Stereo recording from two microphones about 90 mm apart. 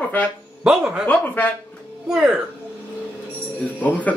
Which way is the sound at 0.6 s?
10° right (ahead or behind).